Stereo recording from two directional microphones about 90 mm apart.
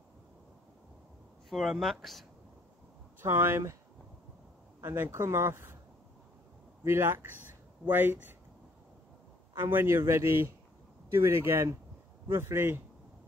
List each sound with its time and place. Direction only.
1.5 s speech: centre (ahead or behind)
3.2 s a man's voice: 25° right (ahead or behind)
4.8 s speech: 25° right (ahead or behind)
6.8 s a man's voice: 30° right (ahead or behind)
9.6 s a man's voice: 25° right (ahead or behind)